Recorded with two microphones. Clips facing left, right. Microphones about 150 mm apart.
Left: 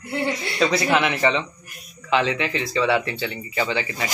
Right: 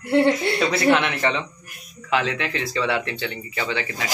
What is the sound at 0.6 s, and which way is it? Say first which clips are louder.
Speech: right 1 dB; centre (ahead or behind).